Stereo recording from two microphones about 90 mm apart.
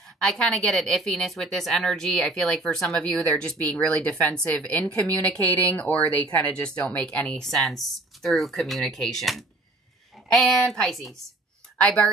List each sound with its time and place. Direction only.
0.2 s speech: 5° left (ahead or behind)